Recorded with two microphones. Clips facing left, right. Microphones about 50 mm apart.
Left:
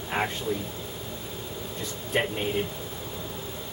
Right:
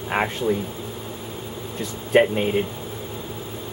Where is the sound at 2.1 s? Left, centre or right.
Right.